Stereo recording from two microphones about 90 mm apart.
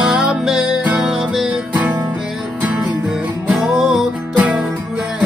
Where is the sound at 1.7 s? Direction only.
15° right (ahead or behind).